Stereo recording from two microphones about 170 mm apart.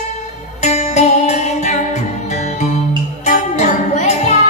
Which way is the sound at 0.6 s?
40° left (ahead or behind).